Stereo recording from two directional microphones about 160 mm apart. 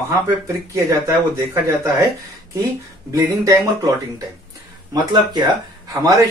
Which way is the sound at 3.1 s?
20° right (ahead or behind).